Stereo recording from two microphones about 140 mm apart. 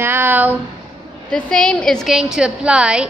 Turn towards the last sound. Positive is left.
turn(degrees=-5)  # may be behind; listen again after turning